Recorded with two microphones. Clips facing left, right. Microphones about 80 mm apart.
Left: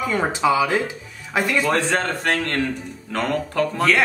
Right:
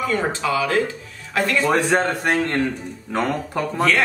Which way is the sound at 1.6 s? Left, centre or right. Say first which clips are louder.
Right 4 dB; centre.